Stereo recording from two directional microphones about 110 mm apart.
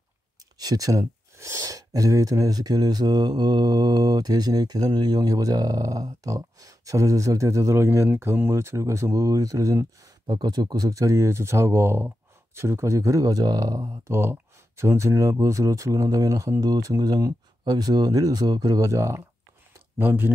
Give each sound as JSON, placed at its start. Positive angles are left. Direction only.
{"t": 0.6, "sound": "a man's voice", "side_deg": -35}